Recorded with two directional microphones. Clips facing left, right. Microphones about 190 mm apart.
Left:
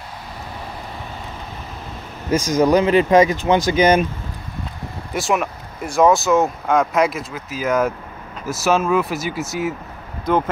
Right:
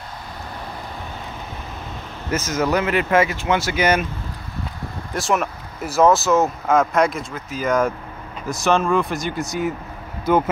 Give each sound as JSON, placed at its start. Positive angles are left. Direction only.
{"t": 2.3, "sound": "speech", "side_deg": 15}
{"t": 5.1, "sound": "speech", "side_deg": 0}